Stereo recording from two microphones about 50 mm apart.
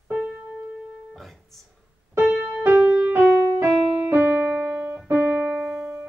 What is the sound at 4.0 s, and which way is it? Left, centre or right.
Music, right.